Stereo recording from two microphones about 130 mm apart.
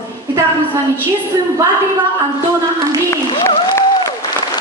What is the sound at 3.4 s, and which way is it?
Applause, 25° left (ahead or behind).